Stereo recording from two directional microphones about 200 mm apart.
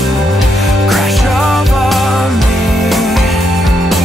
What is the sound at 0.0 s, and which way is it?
Music, centre (ahead or behind).